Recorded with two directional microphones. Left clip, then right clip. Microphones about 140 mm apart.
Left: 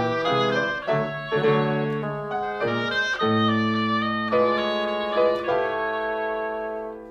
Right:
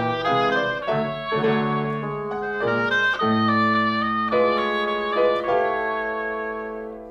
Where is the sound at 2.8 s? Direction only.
25° right (ahead or behind).